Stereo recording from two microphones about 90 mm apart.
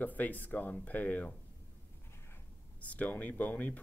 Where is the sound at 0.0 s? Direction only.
20° left (ahead or behind).